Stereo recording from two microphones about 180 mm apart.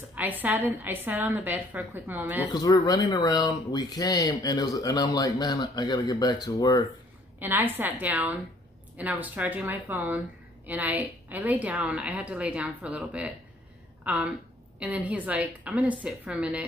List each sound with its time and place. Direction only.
0.1 s a woman's voice: 10° right (ahead or behind)
2.5 s speech: 20° left (ahead or behind)
7.3 s a woman's voice: 10° right (ahead or behind)